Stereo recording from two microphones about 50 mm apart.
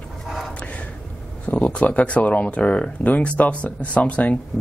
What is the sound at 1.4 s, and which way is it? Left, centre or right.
Speech, left.